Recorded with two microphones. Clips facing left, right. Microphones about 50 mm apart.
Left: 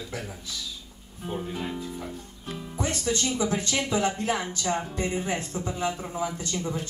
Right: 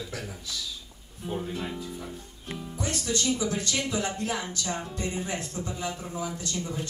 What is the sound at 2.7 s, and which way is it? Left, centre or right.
Speech, left.